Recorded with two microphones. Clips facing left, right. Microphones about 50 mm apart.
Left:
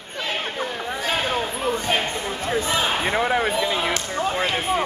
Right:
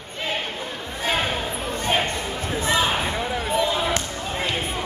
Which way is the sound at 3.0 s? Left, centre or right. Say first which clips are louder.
Left 5 dB; left.